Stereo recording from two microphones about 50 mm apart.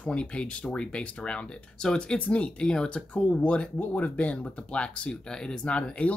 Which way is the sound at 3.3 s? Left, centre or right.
Left.